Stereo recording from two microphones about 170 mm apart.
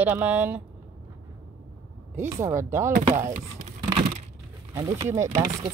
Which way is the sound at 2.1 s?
15° right (ahead or behind).